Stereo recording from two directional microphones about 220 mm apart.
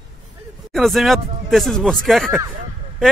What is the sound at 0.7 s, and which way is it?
Speech, centre (ahead or behind).